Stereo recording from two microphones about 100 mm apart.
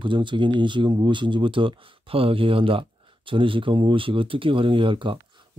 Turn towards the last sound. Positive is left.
turn(degrees=-60)  # may be behind; listen again after turning